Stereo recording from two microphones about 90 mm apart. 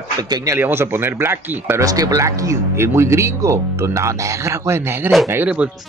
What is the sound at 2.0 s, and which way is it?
Speech, 40° right (ahead or behind).